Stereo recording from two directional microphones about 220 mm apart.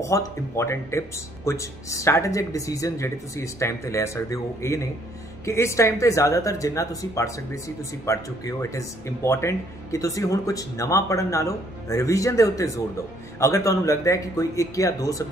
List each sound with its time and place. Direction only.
0.0 s speech: 15° left (ahead or behind)